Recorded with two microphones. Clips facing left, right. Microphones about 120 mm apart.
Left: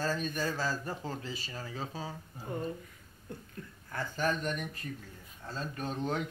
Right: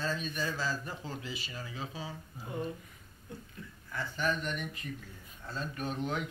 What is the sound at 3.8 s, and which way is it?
Speech, 45° left (ahead or behind).